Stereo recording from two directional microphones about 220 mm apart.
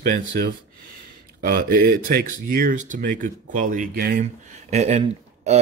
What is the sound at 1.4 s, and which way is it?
Speech, 40° right (ahead or behind).